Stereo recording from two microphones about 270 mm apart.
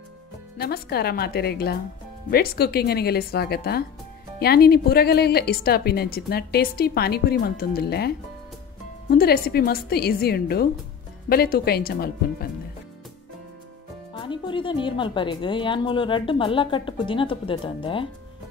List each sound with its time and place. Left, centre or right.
0.6 s a woman's voice: left
9.1 s a woman's voice: left
14.1 s speech: centre